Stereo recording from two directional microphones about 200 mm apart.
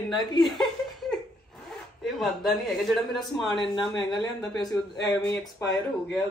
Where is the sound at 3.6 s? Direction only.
20° left (ahead or behind).